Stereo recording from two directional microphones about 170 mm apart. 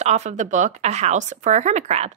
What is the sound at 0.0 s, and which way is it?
A woman's voice, 40° right (ahead or behind).